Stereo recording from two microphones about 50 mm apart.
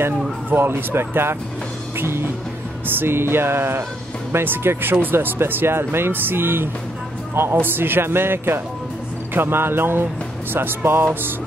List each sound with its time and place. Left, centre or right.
0.5 s speech: right
2.0 s music: right
3.0 s speech: right